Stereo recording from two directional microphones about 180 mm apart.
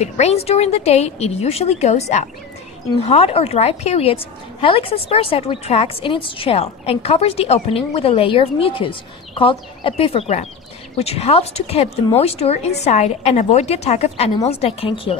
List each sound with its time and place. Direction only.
0.0 s a woman's voice: 35° left (ahead or behind)